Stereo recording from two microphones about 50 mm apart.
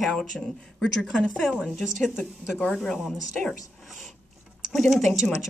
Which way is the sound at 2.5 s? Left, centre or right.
Centre.